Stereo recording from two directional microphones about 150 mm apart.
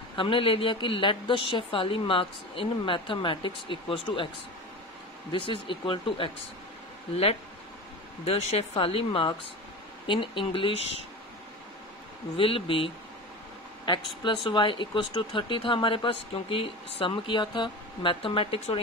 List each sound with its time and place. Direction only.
0.1 s speech: 35° left (ahead or behind)
5.3 s speech: 35° left (ahead or behind)
8.3 s speech: 45° left (ahead or behind)
12.4 s speech: 35° left (ahead or behind)
14.2 s speech: 35° left (ahead or behind)